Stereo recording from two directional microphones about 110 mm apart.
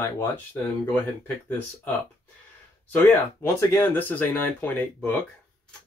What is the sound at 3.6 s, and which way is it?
Speech, 20° left (ahead or behind).